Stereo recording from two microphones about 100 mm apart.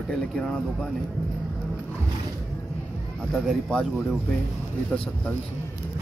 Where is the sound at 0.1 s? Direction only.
10° left (ahead or behind).